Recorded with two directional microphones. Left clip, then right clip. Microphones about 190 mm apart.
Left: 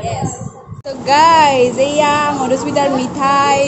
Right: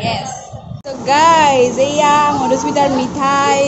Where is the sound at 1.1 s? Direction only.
Centre (ahead or behind).